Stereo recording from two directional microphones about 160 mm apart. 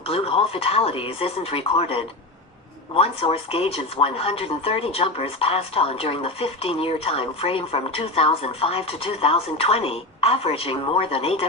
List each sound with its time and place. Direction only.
0.1 s speech: 35° left (ahead or behind)